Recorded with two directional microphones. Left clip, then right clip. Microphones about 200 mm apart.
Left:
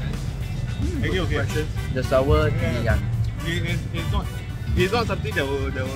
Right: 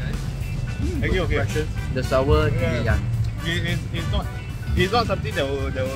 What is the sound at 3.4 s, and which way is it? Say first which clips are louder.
Speech: right 2 dB; 25° right (ahead or behind).